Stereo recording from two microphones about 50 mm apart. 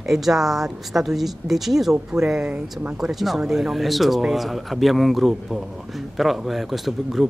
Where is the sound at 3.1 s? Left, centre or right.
Centre.